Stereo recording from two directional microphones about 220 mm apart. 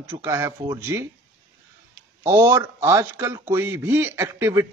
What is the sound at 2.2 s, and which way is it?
A man's voice, 10° right (ahead or behind).